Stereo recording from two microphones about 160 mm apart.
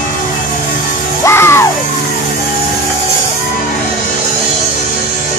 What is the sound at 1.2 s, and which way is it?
Music, 15° left (ahead or behind).